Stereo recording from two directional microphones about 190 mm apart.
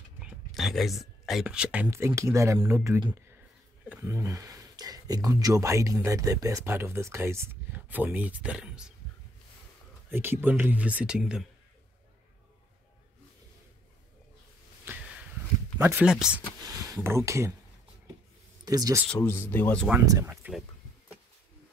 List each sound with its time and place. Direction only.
0.2 s speech: centre (ahead or behind)
10.0 s speech: 10° right (ahead or behind)
15.8 s speech: 10° right (ahead or behind)
16.6 s speech: 20° right (ahead or behind)
18.7 s speech: 20° right (ahead or behind)
19.0 s speech: 10° left (ahead or behind)
20.1 s speech: 15° right (ahead or behind)